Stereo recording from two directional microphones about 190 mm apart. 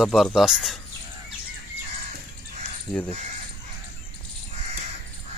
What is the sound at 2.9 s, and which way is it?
Speech, 5° left (ahead or behind).